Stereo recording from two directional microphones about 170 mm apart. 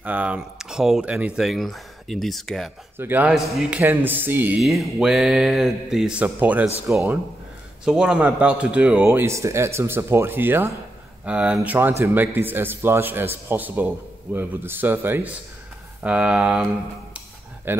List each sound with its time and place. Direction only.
0.0 s speech: 10° right (ahead or behind)
3.0 s a man's voice: 10° right (ahead or behind)
3.8 s a man's voice: 10° right (ahead or behind)
4.6 s a man's voice: centre (ahead or behind); by 7.2 s 15° right (ahead or behind)
7.8 s a man's voice: 5° right (ahead or behind)
17.7 s a man's voice: 15° right (ahead or behind)